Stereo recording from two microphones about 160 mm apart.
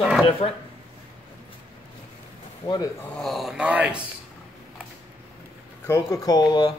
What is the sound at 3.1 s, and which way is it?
Speech, centre (ahead or behind).